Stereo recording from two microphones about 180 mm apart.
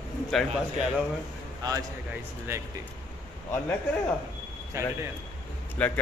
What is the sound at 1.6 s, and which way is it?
Speech, 20° right (ahead or behind).